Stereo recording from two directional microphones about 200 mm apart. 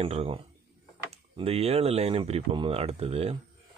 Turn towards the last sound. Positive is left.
turn(degrees=-30)  # may be behind; listen again after turning